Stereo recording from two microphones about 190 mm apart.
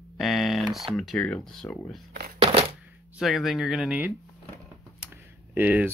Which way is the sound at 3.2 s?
Centre (ahead or behind).